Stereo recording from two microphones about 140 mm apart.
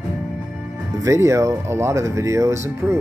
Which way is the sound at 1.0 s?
20° right (ahead or behind).